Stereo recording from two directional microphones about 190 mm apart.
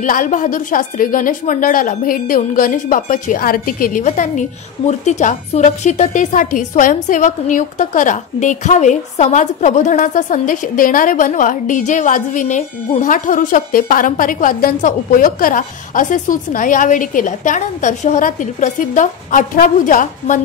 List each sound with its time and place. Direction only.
0.0 s a woman's voice: 45° left (ahead or behind)